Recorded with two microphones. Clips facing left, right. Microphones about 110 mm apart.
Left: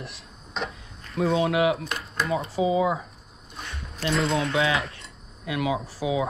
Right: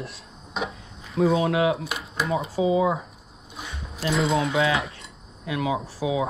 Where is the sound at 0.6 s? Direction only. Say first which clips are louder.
Right 2 dB; 5° right (ahead or behind).